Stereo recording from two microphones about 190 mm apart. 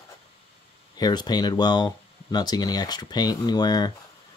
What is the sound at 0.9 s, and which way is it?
Speech, 20° left (ahead or behind).